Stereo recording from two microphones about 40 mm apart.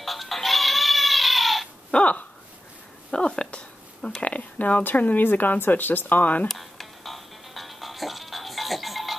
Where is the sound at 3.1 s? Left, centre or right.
Left.